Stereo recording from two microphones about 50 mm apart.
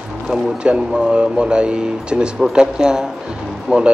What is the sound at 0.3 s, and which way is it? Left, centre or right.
Speech, centre.